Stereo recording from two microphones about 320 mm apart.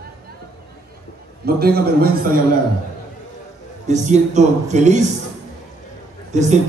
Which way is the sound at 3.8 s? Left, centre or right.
Right.